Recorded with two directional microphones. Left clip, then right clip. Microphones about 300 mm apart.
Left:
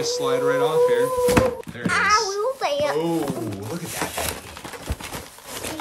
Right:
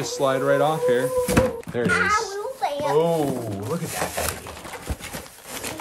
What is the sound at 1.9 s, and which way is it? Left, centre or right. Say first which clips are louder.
Speech: left 2 dB; centre.